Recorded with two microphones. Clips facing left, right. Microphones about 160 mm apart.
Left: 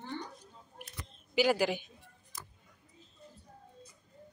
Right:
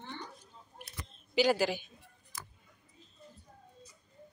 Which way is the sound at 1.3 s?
15° left (ahead or behind).